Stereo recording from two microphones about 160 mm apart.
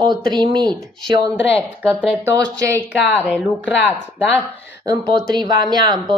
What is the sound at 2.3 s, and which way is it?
Speech, 20° right (ahead or behind).